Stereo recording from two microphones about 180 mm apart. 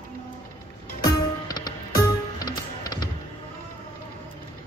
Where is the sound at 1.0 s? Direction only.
20° left (ahead or behind).